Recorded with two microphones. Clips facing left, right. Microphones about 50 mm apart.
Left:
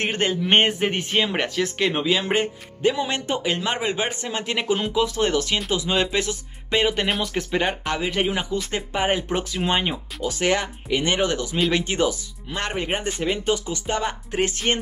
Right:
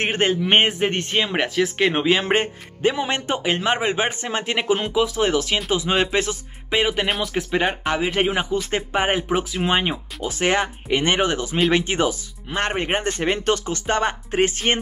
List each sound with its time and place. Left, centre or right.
0.0 s speech: right
0.4 s speech: centre
1.8 s speech: right
4.9 s speech: centre
5.7 s speech: right
6.7 s speech: centre
7.8 s speech: right
9.3 s speech: centre
10.4 s speech: right
14.7 s speech: right